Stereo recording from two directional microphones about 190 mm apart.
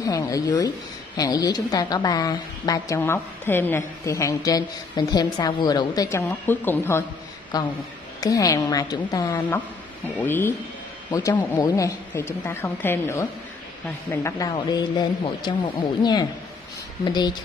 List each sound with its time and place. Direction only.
0.0 s a woman's voice: 20° left (ahead or behind)